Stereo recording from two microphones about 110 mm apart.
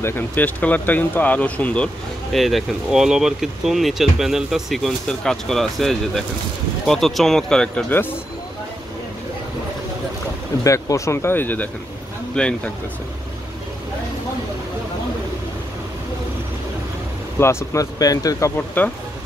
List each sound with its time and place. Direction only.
0.0 s speech: 15° left (ahead or behind)
2.3 s speech: centre (ahead or behind)
7.9 s speech: 20° left (ahead or behind)
10.6 s speech: 30° left (ahead or behind); by 12.7 s 10° left (ahead or behind)
17.4 s speech: 25° left (ahead or behind)
18.8 s speech: 15° left (ahead or behind)